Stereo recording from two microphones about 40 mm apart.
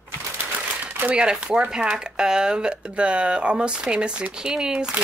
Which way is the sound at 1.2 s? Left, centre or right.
Right.